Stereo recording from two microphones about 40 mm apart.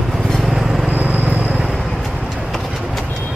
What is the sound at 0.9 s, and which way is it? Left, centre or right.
Vehicle, right.